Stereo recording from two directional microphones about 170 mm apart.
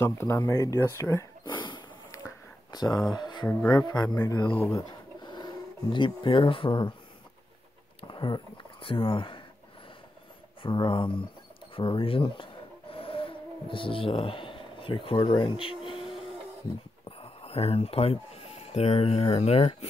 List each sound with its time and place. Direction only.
0.0 s a sound: 15° left (ahead or behind)
2.7 s speech: 25° left (ahead or behind)
4.7 s a sound: 25° left (ahead or behind)
8.0 s speech: 30° left (ahead or behind)
10.6 s speech: 30° left (ahead or behind)
12.9 s vehicle: 30° left (ahead or behind)
17.2 s speech: 35° left (ahead or behind)